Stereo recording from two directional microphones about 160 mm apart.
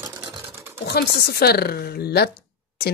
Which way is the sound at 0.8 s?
85° left.